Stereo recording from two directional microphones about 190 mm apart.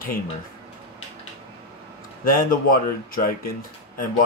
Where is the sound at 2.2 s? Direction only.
50° left (ahead or behind).